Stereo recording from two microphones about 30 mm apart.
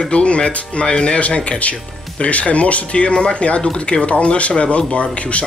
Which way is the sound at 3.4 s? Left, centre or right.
Left.